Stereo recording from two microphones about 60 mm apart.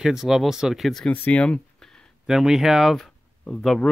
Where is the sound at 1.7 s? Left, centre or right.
Centre.